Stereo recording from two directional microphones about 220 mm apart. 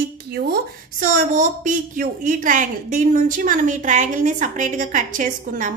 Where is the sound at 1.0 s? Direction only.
35° right (ahead or behind).